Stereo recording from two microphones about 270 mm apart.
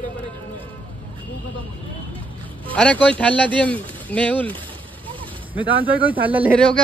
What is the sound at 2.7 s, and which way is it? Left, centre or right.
Speech, centre.